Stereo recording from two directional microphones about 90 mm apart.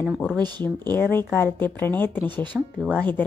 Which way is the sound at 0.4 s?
55° right (ahead or behind).